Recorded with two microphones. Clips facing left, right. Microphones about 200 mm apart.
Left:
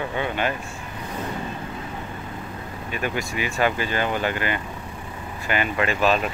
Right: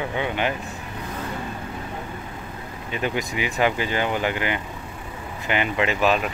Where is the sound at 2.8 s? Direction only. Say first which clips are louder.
Right 2 dB; 20° right (ahead or behind).